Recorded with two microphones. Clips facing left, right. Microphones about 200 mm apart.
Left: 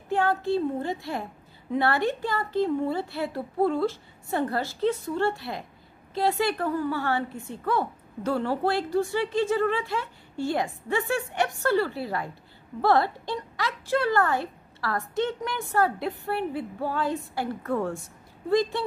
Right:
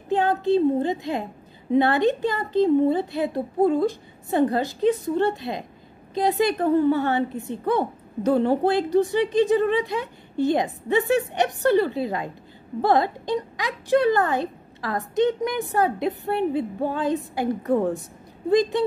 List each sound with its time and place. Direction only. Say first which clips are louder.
0.1 s a woman's voice: right 4 dB; 20° right (ahead or behind)